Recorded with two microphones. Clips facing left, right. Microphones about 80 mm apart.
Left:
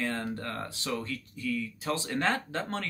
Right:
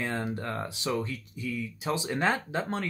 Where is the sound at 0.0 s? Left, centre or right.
Centre.